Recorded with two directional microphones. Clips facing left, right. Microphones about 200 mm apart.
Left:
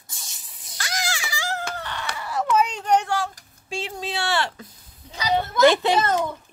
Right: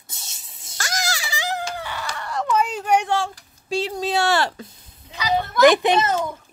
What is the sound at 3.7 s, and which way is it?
Speech, 40° right (ahead or behind).